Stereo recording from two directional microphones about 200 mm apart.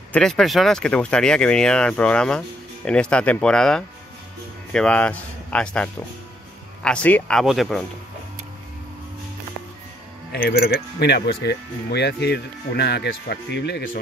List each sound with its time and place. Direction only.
0.1 s speech: 5° left (ahead or behind)
10.3 s speech: 50° left (ahead or behind)